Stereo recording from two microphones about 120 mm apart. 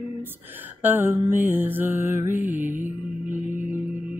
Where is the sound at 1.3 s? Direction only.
15° right (ahead or behind).